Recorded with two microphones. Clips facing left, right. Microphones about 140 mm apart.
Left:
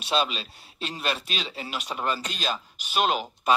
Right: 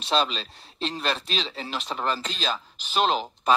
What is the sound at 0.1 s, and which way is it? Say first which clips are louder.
Speech: right 1 dB; 10° left (ahead or behind).